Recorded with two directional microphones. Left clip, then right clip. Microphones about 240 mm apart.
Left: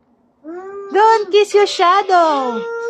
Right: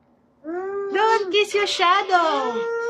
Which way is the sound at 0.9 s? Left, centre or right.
Left.